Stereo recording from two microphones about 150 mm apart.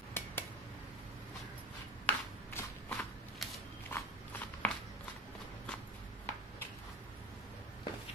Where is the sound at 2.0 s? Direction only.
15° left (ahead or behind).